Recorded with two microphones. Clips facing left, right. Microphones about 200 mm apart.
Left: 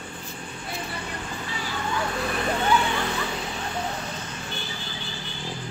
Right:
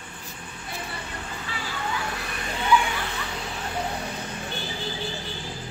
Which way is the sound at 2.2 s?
50° left (ahead or behind).